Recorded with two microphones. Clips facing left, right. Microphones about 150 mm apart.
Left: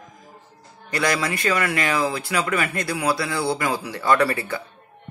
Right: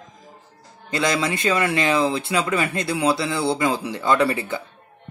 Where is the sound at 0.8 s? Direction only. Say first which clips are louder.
Right 1 dB; 20° right (ahead or behind).